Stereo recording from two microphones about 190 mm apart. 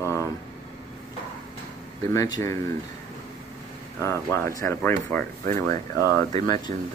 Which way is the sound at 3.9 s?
15° left (ahead or behind).